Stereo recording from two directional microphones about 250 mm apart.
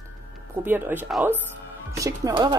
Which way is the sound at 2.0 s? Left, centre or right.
Centre.